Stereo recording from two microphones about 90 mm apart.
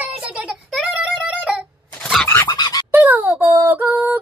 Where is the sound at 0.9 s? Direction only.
5° right (ahead or behind).